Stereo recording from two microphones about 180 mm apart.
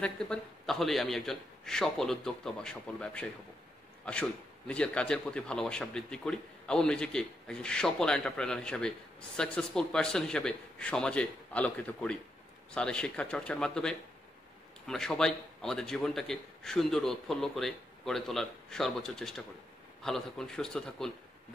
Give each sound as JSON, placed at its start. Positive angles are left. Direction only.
{"t": 0.0, "sound": "a man's voice", "side_deg": 5}